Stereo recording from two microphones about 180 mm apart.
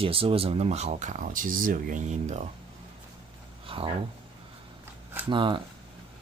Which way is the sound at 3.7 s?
30° right (ahead or behind).